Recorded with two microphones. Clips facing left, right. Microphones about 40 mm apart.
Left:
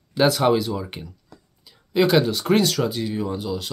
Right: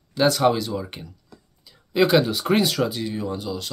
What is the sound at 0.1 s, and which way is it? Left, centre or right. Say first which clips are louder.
Speech: left 1 dB; centre.